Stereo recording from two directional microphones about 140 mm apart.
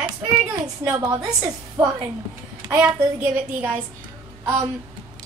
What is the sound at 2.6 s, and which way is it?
A woman's voice, 15° right (ahead or behind).